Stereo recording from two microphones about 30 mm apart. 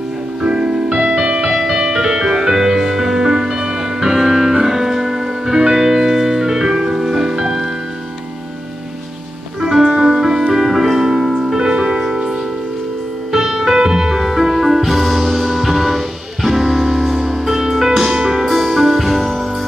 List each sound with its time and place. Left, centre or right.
0.4 s music: right
1.5 s music: centre
9.6 s music: centre
13.3 s music: centre
18.4 s music: centre